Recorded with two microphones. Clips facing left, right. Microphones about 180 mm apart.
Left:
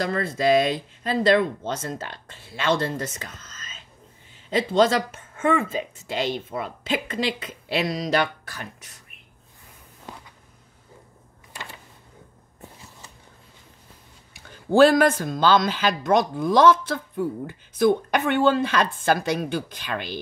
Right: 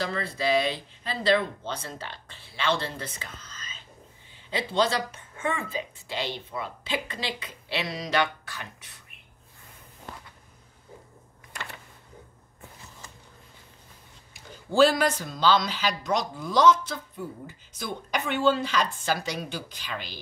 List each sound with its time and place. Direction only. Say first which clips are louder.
0.0 s speech: left 6 dB; 50° left (ahead or behind)
14.5 s speech: left 5 dB; 55° left (ahead or behind)